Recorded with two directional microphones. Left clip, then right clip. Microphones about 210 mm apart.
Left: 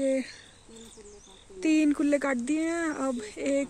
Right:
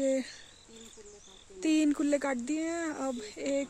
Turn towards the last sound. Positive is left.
turn(degrees=-5)  # may be behind; listen again after turning